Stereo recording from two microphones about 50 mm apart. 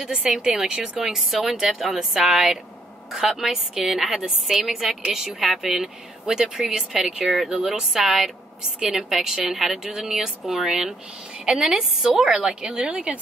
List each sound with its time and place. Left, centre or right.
0.0 s speech: centre
1.0 s a woman's voice: centre
11.7 s a woman's voice: right